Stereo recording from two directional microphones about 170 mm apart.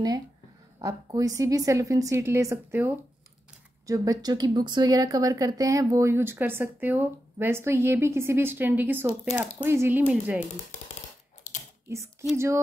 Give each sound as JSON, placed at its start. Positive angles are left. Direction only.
{"t": 0.7, "sound": "a woman's voice", "side_deg": -20}
{"t": 11.9, "sound": "speech", "side_deg": -15}